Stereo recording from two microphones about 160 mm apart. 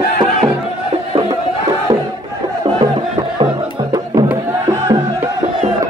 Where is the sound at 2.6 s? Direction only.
30° right (ahead or behind).